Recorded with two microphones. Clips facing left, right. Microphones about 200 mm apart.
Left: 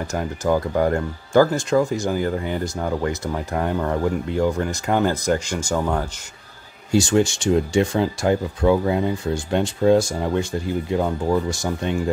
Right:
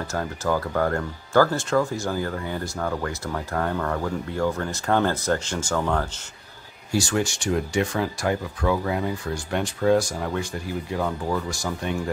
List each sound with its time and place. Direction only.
0.1 s speech: 15° left (ahead or behind)
6.9 s speech: 25° left (ahead or behind)